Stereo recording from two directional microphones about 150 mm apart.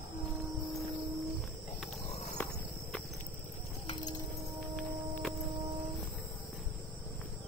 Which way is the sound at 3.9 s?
30° left (ahead or behind).